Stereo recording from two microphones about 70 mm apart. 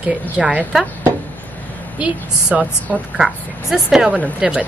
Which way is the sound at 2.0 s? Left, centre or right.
Centre.